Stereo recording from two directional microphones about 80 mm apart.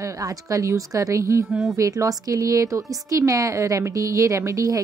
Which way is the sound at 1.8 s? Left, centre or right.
Right.